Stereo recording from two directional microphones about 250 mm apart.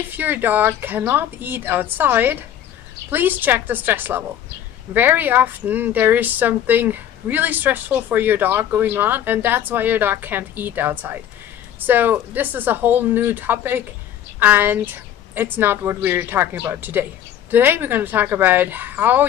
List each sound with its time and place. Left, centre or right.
0.1 s speech: centre